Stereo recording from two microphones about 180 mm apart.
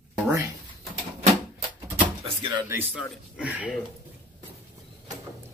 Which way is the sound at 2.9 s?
5° right (ahead or behind).